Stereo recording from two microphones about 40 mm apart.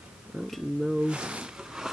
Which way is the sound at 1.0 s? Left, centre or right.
Right.